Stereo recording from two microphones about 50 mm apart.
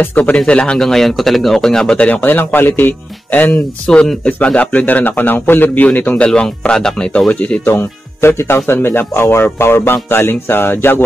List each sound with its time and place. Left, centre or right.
0.1 s speech: left
0.7 s speech: centre
2.2 s a man's voice: left
3.8 s a man's voice: left
6.1 s speech: left
7.7 s speech: left